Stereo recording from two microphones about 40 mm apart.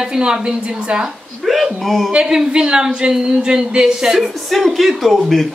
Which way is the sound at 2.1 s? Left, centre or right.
Right.